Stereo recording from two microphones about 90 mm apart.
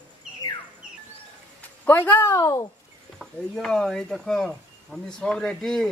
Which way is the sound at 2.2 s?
40° left (ahead or behind).